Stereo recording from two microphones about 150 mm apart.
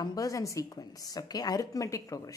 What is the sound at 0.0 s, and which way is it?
A woman's voice, 25° left (ahead or behind).